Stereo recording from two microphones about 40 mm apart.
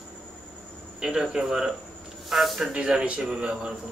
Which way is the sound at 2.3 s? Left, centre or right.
Centre.